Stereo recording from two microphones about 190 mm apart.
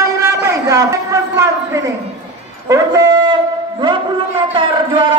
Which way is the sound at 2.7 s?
15° right (ahead or behind).